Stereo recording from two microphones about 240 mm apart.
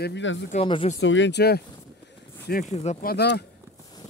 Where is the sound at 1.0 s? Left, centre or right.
Left.